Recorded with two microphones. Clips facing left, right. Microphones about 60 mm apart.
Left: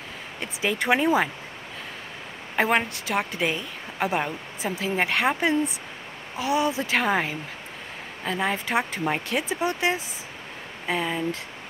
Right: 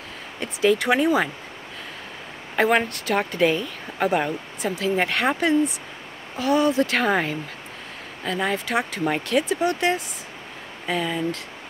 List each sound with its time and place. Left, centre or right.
0.4 s speech: centre
2.5 s speech: centre
8.6 s speech: left